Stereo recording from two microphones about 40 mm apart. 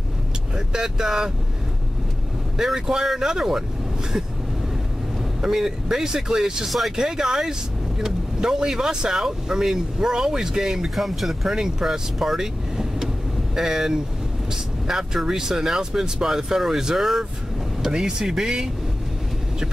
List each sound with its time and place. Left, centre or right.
0.7 s speech: centre
2.5 s speech: centre
5.4 s speech: centre
11.0 s speech: centre
11.5 s speech: centre